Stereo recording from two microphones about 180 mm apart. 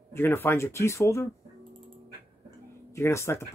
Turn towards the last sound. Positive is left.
turn(degrees=15)  # may be behind; listen again after turning